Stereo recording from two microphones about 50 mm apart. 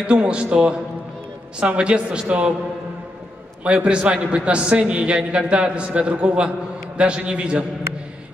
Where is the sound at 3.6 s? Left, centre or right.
Right.